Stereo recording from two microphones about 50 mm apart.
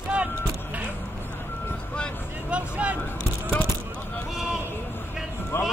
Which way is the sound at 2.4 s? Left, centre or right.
Right.